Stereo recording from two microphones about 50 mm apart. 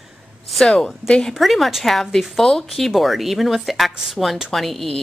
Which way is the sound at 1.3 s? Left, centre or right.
Centre.